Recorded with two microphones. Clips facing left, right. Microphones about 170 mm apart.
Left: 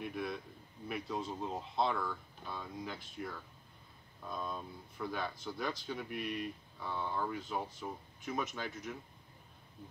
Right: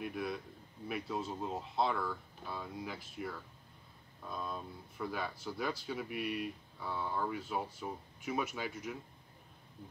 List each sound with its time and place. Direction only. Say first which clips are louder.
0.0 s speech: right 1 dB; centre (ahead or behind)